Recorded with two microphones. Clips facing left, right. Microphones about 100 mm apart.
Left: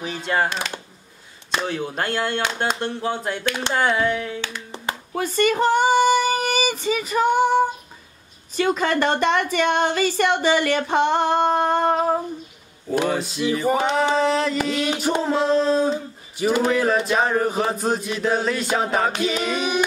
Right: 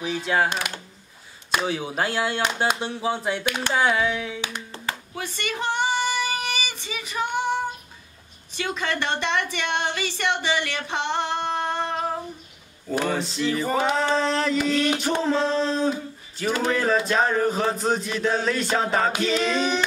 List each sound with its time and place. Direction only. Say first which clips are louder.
0.0 s chant: even; centre (ahead or behind)
1.5 s chant: even; 5° right (ahead or behind)
5.1 s female singing: left 16 dB; 40° left (ahead or behind)
8.5 s speech: left 7 dB; 45° left (ahead or behind)
13.0 s a sound: left 2 dB; 5° left (ahead or behind)
17.8 s chant: left 1 dB; 5° left (ahead or behind)
19.2 s a sound: even; 10° left (ahead or behind)